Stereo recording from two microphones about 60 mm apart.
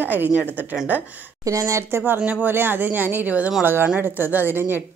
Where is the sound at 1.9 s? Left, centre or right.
Right.